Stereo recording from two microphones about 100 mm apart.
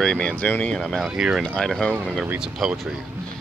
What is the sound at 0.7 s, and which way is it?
Speech, 5° right (ahead or behind).